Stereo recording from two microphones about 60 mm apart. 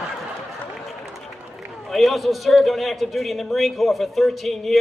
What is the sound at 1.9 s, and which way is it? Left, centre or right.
A man's voice, centre.